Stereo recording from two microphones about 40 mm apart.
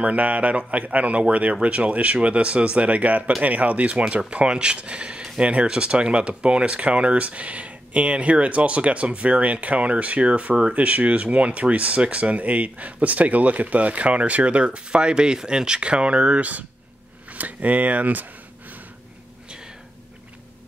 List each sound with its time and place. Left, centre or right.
0.0 s speech: right